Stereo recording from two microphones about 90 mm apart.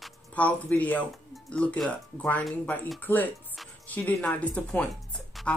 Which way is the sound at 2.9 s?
20° left (ahead or behind).